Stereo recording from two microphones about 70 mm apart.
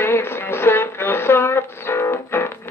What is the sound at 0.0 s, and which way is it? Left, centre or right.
Music, left.